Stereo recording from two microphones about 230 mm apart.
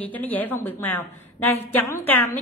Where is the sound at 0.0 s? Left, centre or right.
Centre.